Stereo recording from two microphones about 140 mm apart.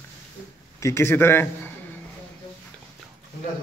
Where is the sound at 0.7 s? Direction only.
20° left (ahead or behind).